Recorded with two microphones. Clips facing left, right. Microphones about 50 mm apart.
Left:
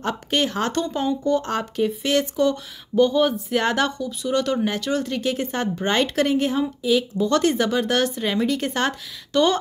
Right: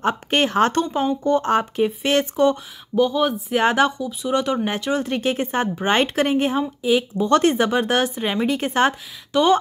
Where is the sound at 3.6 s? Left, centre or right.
Right.